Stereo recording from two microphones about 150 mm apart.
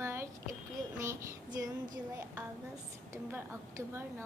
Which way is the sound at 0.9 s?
20° right (ahead or behind).